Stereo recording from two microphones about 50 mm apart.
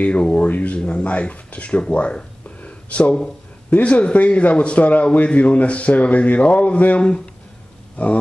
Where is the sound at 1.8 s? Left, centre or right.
Left.